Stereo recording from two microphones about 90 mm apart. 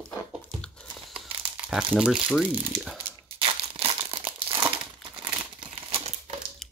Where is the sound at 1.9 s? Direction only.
10° right (ahead or behind).